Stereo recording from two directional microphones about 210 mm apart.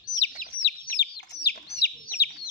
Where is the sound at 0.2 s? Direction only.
50° left (ahead or behind).